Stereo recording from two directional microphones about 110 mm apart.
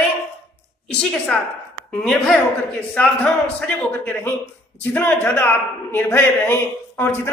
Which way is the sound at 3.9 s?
20° left (ahead or behind).